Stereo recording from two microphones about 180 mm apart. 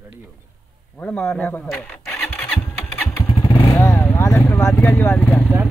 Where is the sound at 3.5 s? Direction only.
20° left (ahead or behind).